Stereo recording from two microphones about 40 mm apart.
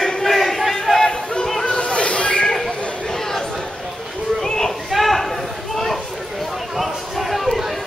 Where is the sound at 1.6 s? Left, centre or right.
Left.